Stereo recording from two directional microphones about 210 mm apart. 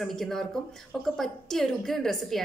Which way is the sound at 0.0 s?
Centre (ahead or behind).